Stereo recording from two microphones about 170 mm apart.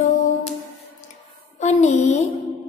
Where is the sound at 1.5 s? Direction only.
45° left (ahead or behind).